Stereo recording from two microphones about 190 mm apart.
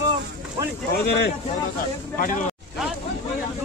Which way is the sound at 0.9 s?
60° left (ahead or behind).